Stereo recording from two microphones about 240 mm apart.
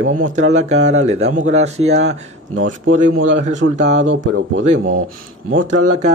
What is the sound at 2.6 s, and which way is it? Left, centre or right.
Speech, right.